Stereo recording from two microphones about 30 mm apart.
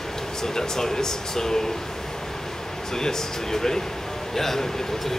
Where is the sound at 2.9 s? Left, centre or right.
Centre.